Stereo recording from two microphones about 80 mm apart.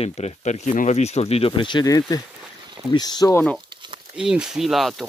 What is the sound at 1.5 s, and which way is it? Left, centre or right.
Speech, left.